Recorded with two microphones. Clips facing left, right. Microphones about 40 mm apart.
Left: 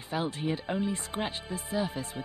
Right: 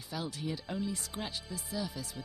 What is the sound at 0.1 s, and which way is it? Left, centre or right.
Speech, left.